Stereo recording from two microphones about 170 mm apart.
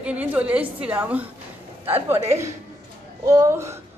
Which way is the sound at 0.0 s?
10° right (ahead or behind).